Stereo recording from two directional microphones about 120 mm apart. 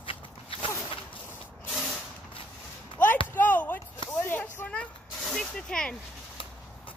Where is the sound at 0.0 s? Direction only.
50° left (ahead or behind).